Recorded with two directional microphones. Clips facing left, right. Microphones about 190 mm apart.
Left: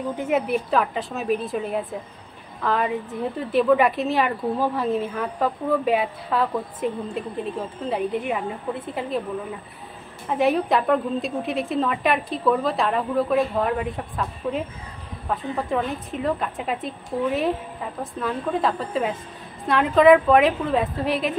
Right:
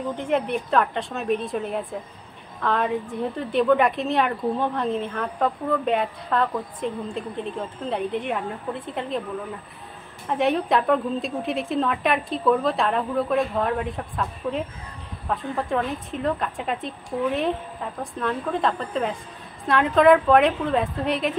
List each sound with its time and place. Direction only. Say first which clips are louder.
0.1 s a woman's voice: left 2 dB; 5° left (ahead or behind)